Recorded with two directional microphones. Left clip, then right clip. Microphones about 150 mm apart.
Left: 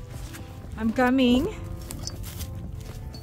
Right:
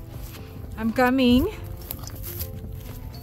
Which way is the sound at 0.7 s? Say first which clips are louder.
Right 2 dB; 30° right (ahead or behind).